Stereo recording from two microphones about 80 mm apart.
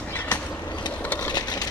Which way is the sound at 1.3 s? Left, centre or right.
Left.